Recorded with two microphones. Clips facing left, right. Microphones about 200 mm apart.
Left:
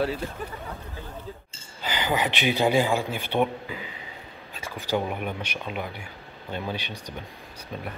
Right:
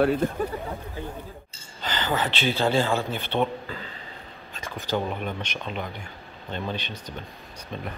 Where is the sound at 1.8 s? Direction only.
10° left (ahead or behind).